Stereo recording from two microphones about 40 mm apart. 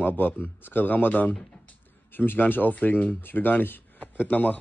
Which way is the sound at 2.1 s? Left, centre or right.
Left.